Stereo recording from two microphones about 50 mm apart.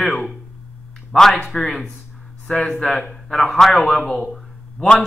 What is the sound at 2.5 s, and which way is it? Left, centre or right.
Speech, left.